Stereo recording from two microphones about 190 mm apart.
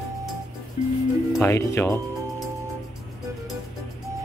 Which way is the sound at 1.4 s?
15° left (ahead or behind).